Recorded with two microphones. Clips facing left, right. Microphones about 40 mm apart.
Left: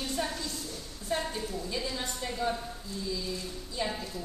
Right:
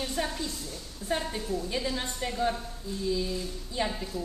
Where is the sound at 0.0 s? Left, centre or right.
Centre.